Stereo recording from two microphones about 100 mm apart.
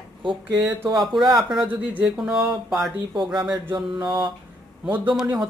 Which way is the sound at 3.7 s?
50° right (ahead or behind).